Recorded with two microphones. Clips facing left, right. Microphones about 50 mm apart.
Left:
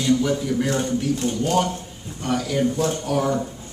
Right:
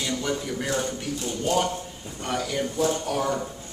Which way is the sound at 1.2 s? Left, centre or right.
Left.